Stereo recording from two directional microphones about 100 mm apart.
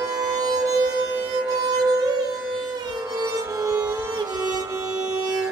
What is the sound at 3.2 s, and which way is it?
Music, 35° right (ahead or behind).